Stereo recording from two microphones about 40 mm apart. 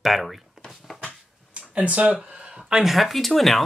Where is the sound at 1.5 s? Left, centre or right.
Right.